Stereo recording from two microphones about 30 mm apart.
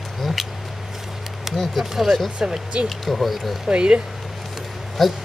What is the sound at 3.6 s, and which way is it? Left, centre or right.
Speech, right.